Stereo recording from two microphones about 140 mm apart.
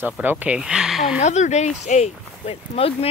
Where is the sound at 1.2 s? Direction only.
55° left (ahead or behind).